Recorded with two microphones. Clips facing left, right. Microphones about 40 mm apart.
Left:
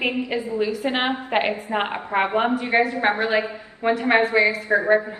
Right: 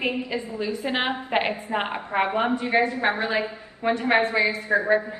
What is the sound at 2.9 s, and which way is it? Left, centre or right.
A woman's voice, left.